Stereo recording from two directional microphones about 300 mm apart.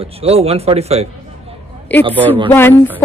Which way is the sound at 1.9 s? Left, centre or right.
Centre.